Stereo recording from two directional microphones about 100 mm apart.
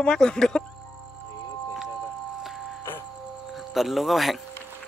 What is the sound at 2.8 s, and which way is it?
Music, 25° left (ahead or behind).